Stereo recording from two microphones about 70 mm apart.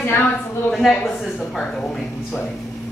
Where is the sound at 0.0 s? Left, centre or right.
Left.